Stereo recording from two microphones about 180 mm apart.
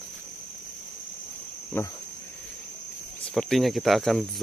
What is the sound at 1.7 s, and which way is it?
Speech, 10° left (ahead or behind).